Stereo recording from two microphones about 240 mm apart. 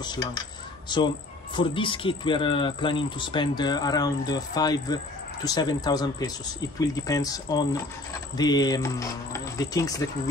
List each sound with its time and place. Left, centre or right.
0.0 s speech: centre